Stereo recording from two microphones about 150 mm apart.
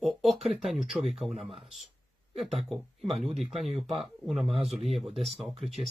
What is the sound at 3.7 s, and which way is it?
Speech, 40° right (ahead or behind).